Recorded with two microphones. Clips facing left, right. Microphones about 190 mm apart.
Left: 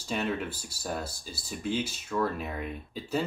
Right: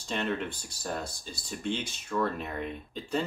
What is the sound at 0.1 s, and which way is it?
Speech, 5° left (ahead or behind).